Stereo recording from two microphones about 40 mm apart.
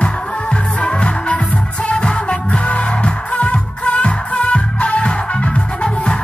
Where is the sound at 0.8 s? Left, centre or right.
Left.